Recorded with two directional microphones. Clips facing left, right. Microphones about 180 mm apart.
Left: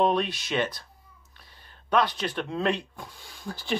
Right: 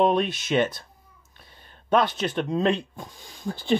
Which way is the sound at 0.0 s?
25° right (ahead or behind).